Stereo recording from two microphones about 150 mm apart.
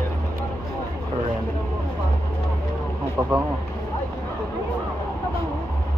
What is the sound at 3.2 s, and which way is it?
Speech, 20° right (ahead or behind).